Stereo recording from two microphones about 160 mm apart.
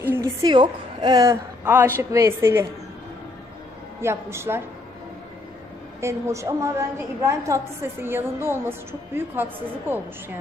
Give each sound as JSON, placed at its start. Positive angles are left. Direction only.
{"t": 0.0, "sound": "a sound", "side_deg": -15}
{"t": 0.5, "sound": "a woman's voice", "side_deg": -25}
{"t": 4.0, "sound": "a woman's voice", "side_deg": -15}
{"t": 5.9, "sound": "a woman's voice", "side_deg": -15}